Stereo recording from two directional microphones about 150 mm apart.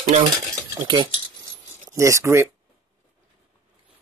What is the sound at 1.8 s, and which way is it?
Speech, 20° right (ahead or behind).